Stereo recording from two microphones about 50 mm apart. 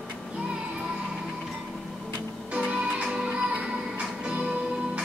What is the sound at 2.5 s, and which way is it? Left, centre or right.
Music, right.